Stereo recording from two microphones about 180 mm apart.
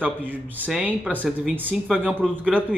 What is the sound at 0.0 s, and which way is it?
Speech, 10° right (ahead or behind).